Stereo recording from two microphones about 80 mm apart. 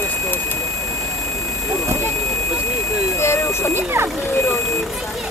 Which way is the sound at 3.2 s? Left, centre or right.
Left.